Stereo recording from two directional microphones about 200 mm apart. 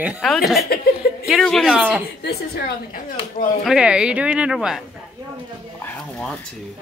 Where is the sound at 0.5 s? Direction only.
50° left (ahead or behind).